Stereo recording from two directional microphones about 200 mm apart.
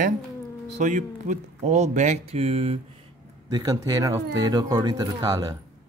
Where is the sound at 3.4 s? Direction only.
20° right (ahead or behind).